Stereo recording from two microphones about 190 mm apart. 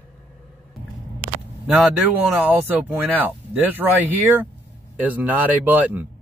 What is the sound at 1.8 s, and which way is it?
Speech, 10° right (ahead or behind).